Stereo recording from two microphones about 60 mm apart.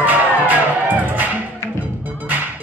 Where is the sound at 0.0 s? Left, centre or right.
Right.